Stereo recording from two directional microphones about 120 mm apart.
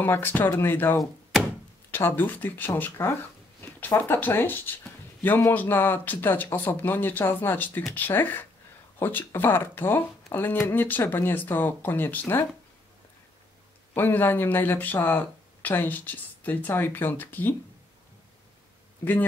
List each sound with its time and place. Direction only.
0.0 s speech: 15° left (ahead or behind)
3.6 s a sound: 15° left (ahead or behind)
4.0 s speech: 20° left (ahead or behind)
13.9 s speech: 15° left (ahead or behind)